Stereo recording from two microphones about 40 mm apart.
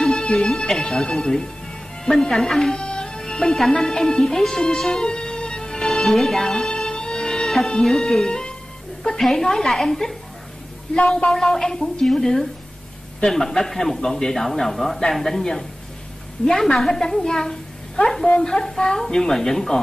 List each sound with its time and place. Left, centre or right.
0.0 s speech: centre
2.8 s music: left
7.8 s speech: centre
11.2 s speech: centre